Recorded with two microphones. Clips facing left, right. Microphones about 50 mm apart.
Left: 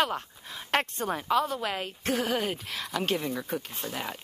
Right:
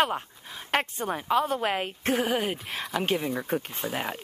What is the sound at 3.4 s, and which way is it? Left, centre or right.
Speech, right.